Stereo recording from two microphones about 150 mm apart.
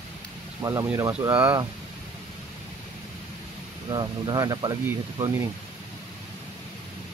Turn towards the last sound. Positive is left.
turn(degrees=-20)  # may be behind; listen again after turning